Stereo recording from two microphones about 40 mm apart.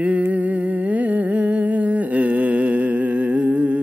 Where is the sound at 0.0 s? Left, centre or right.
Right.